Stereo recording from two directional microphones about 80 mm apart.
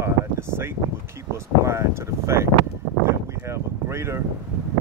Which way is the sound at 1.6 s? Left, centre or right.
Right.